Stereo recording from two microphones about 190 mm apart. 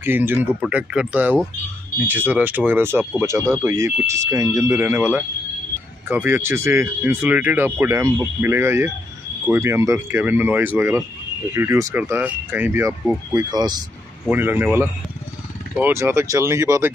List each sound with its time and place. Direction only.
0.0 s speech: 10° right (ahead or behind)
13.3 s speech: 20° right (ahead or behind)
14.3 s speech: 10° right (ahead or behind)